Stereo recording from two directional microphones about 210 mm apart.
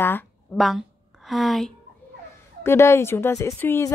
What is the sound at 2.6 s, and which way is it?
A woman's voice, 10° left (ahead or behind).